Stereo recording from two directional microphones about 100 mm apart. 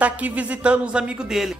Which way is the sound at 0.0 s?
15° right (ahead or behind).